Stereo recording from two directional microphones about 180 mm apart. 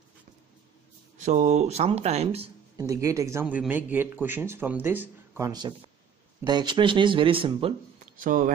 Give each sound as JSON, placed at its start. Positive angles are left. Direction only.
{"t": 1.1, "sound": "speech", "side_deg": -40}
{"t": 2.8, "sound": "speech", "side_deg": -20}
{"t": 5.5, "sound": "speech", "side_deg": -25}
{"t": 8.0, "sound": "speech", "side_deg": -50}